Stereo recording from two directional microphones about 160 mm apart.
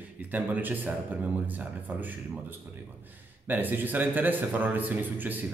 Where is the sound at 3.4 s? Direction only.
10° right (ahead or behind).